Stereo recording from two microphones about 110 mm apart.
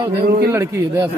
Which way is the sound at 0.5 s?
25° right (ahead or behind).